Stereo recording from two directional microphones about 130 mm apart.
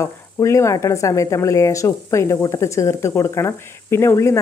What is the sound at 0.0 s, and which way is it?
Speech, 20° left (ahead or behind).